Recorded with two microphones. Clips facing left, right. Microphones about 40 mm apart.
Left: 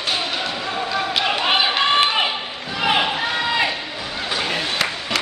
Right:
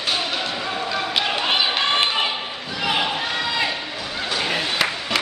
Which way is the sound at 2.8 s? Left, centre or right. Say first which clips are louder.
Left 4 dB; left.